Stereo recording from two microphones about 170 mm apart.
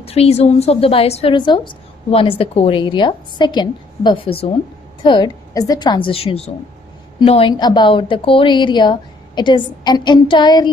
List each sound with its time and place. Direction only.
0.0 s a woman's voice: 35° left (ahead or behind)